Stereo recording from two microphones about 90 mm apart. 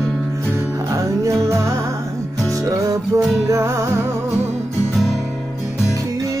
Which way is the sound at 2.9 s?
35° right (ahead or behind).